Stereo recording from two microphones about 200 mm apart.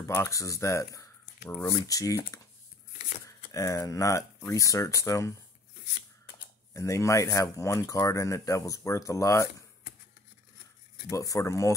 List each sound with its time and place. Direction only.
0.0 s speech: 15° left (ahead or behind)
6.7 s speech: 15° left (ahead or behind)
11.1 s speech: 15° left (ahead or behind)